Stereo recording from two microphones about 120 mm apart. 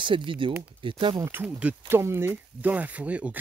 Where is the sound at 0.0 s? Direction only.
45° right (ahead or behind).